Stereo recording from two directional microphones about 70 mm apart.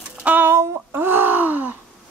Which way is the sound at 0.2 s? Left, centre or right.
Right.